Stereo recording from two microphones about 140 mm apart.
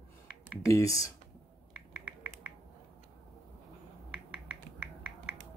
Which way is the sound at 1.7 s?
10° right (ahead or behind).